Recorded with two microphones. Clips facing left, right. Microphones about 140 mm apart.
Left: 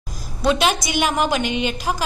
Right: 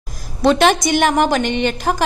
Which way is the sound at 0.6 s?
55° right (ahead or behind).